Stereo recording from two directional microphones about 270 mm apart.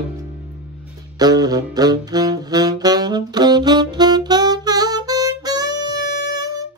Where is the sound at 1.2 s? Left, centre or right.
Centre.